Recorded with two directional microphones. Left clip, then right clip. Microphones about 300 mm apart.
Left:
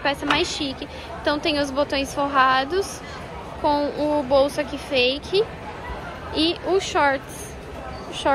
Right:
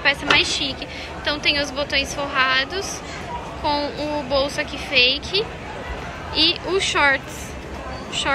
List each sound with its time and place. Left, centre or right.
0.0 s a woman's voice: centre